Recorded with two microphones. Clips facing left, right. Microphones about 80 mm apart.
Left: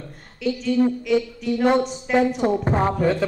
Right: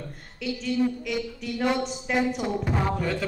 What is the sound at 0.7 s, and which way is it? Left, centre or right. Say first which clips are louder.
Speech: left 5 dB; left.